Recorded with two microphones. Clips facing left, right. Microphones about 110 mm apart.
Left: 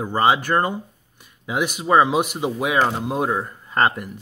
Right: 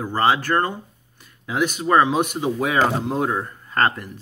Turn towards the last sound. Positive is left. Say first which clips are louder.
# left 1 dB
turn(degrees=15)  # may be behind; listen again after turning